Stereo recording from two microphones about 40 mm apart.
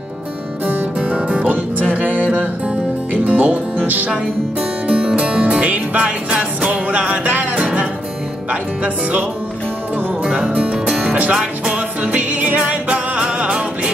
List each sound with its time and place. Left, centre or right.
0.9 s music: right
2.2 s music: right
3.3 s music: right
4.8 s music: right
5.1 s music: right
6.0 s music: right
6.9 s music: right
7.5 s music: right
10.4 s music: centre; by 12.5 s right
12.5 s music: right